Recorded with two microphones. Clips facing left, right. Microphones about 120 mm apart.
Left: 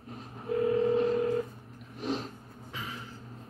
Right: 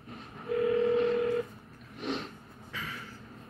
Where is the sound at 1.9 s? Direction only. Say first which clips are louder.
Left 2 dB; 35° left (ahead or behind).